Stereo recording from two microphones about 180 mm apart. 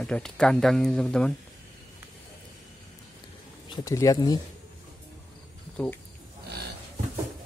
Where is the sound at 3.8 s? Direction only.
20° left (ahead or behind).